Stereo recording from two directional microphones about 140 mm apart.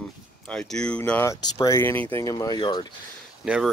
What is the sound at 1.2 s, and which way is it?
Speech, 20° left (ahead or behind).